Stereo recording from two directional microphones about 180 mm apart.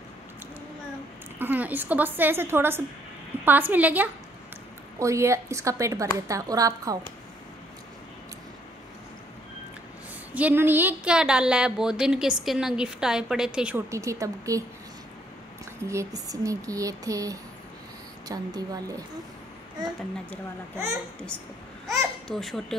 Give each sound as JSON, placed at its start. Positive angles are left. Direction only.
{"t": 1.4, "sound": "a woman's voice", "side_deg": -10}
{"t": 10.3, "sound": "a woman's voice", "side_deg": -10}
{"t": 15.9, "sound": "a sound", "side_deg": -20}
{"t": 21.8, "sound": "speech", "side_deg": 0}